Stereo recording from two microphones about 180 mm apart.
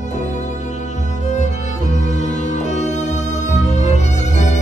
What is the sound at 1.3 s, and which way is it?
Music, 40° left (ahead or behind).